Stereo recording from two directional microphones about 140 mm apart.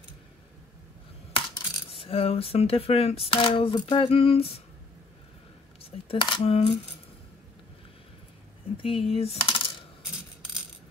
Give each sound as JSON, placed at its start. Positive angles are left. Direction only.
{"t": 1.9, "sound": "speech", "side_deg": 45}
{"t": 5.9, "sound": "coin", "side_deg": 40}
{"t": 8.7, "sound": "coin", "side_deg": 40}